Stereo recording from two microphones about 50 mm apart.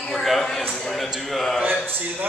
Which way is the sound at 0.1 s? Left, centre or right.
Centre.